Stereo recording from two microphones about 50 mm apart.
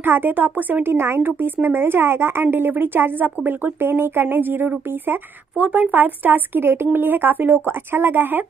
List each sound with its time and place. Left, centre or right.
0.0 s speech: right
0.9 s a woman's voice: right
5.6 s speech: right